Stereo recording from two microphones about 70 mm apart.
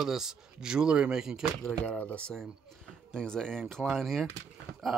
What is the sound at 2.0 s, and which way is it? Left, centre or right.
Speech, centre.